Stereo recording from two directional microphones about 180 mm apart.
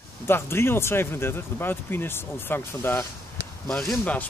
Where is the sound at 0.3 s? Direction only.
15° left (ahead or behind).